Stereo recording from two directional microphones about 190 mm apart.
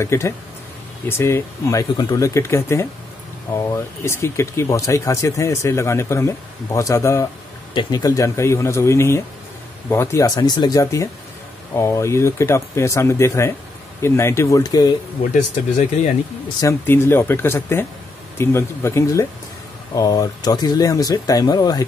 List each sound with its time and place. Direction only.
0.0 s speech: 15° left (ahead or behind)
16.6 s speech: 15° left (ahead or behind)